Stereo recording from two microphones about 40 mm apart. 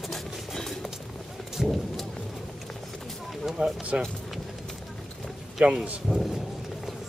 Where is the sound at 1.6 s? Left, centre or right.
Centre.